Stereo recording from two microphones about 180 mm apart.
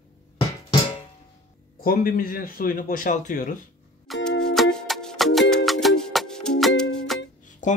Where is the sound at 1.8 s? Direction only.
55° left (ahead or behind).